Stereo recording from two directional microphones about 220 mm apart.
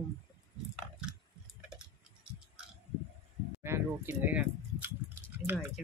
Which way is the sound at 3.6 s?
10° right (ahead or behind).